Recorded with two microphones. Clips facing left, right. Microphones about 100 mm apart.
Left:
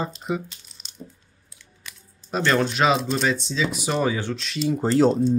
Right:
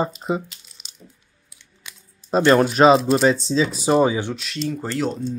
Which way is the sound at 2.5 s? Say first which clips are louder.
Right 7 dB; 40° right (ahead or behind).